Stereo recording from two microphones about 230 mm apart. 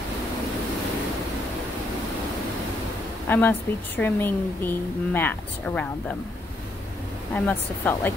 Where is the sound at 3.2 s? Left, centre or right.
Centre.